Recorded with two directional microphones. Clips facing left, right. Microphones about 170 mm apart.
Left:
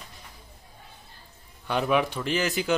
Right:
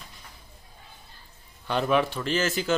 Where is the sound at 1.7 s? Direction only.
10° left (ahead or behind).